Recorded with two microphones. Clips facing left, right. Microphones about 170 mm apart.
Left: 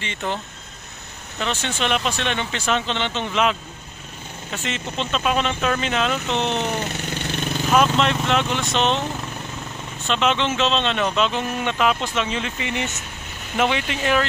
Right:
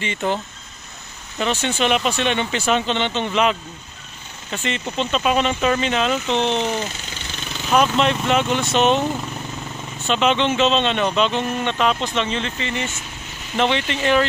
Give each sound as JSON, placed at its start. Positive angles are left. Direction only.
{"t": 0.0, "sound": "speech", "side_deg": -5}
{"t": 1.4, "sound": "speech", "side_deg": -5}
{"t": 6.9, "sound": "vehicle", "side_deg": 55}
{"t": 7.7, "sound": "speech", "side_deg": 0}
{"t": 10.0, "sound": "speech", "side_deg": 0}
{"t": 13.6, "sound": "speech", "side_deg": 5}